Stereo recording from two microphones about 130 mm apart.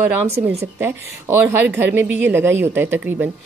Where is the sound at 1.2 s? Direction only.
15° right (ahead or behind).